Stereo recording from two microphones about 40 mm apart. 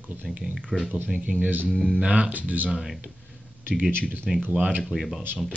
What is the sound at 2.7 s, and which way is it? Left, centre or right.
Speech, centre.